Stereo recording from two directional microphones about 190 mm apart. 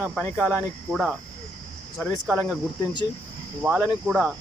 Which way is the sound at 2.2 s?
Centre (ahead or behind).